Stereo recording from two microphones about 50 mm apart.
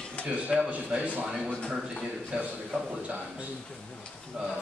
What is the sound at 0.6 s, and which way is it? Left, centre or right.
Speech, right.